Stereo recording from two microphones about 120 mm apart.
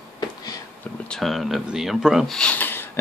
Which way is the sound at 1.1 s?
Centre (ahead or behind).